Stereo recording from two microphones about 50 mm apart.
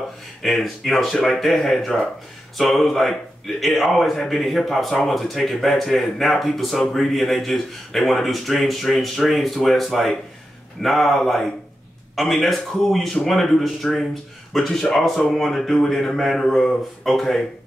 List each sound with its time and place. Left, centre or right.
0.4 s speech: centre